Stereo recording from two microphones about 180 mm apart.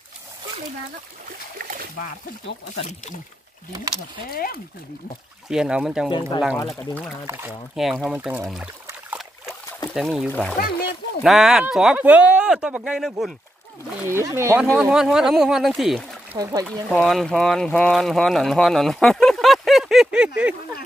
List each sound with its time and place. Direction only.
4.3 s speech: 55° left (ahead or behind)
5.5 s speech: 5° right (ahead or behind)
6.0 s speech: 25° left (ahead or behind)
7.2 s speech: 15° right (ahead or behind)
7.7 s speech: centre (ahead or behind)
9.9 s speech: centre (ahead or behind)
14.0 s speech: 15° right (ahead or behind)
14.6 s speech: 5° right (ahead or behind)
16.3 s speech: 20° right (ahead or behind)
16.9 s speech: centre (ahead or behind)